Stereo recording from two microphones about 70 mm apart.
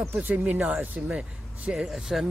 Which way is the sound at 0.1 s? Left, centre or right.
Right.